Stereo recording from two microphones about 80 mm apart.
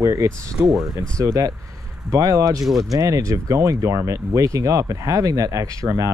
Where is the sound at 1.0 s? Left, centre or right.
Right.